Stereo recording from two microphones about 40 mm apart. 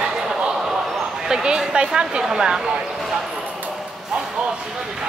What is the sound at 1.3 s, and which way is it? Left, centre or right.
Speech, centre.